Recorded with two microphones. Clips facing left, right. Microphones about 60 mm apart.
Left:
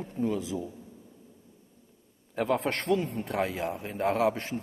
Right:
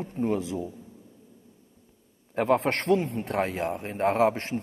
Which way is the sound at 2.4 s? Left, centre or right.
Right.